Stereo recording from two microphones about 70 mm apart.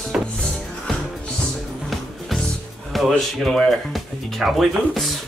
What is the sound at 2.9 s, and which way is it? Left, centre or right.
Speech, centre.